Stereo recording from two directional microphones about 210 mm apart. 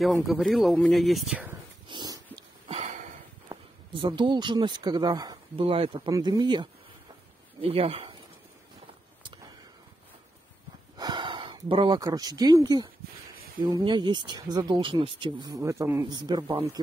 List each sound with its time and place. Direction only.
0.0 s speech: centre (ahead or behind)
1.9 s dog: 20° right (ahead or behind)
2.3 s a sound: 25° right (ahead or behind)
3.4 s speech: 25° right (ahead or behind)
11.0 s speech: 20° right (ahead or behind)